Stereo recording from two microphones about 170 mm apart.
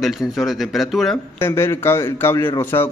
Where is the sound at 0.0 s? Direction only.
Centre (ahead or behind).